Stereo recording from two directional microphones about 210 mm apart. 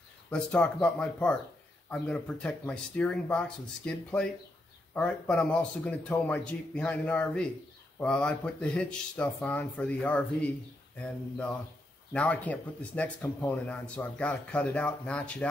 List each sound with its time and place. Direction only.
0.3 s speech: 5° left (ahead or behind)